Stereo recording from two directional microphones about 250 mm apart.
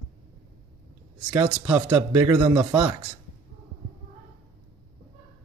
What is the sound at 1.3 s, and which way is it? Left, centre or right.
Speech, centre.